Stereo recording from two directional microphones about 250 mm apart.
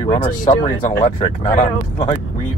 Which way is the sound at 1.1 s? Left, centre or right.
Left.